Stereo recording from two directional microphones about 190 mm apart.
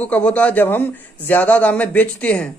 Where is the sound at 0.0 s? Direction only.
5° left (ahead or behind).